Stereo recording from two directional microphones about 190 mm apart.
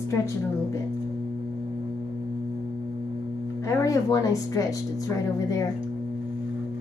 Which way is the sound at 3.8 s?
20° left (ahead or behind).